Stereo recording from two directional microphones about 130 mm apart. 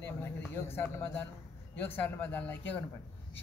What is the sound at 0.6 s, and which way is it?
Speech, 15° left (ahead or behind).